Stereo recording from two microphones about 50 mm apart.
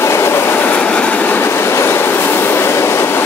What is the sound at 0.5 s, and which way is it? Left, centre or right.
Train, left.